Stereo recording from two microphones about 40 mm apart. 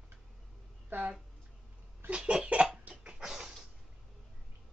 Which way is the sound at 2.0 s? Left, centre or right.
Right.